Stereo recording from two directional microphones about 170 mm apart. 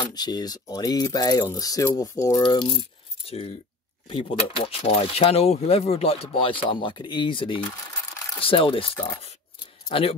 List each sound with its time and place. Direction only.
0.0 s speech: 25° left (ahead or behind)
8.9 s speech: 15° left (ahead or behind)
9.8 s speech: 35° left (ahead or behind)